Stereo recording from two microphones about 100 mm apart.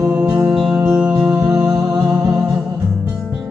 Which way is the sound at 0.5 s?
10° right (ahead or behind).